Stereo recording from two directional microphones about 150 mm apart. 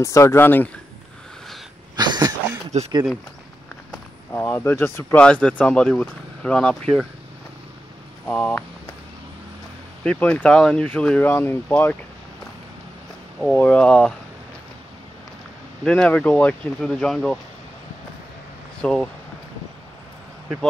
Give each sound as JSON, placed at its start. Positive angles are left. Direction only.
{"t": 0.0, "sound": "speech", "side_deg": 20}
{"t": 2.0, "sound": "a sound", "side_deg": -30}
{"t": 2.7, "sound": "speech", "side_deg": -50}
{"t": 4.3, "sound": "speech", "side_deg": 15}
{"t": 8.3, "sound": "speech", "side_deg": 15}
{"t": 10.0, "sound": "speech", "side_deg": 10}
{"t": 13.4, "sound": "speech", "side_deg": 10}
{"t": 15.8, "sound": "speech", "side_deg": 5}
{"t": 18.8, "sound": "speech", "side_deg": 5}